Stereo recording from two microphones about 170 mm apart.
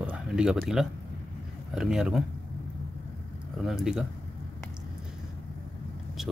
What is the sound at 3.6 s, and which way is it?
Speech, centre (ahead or behind).